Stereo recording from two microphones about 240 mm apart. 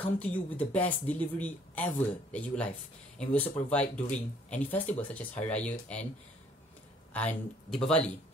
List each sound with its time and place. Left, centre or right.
0.0 s speech: centre
7.2 s speech: centre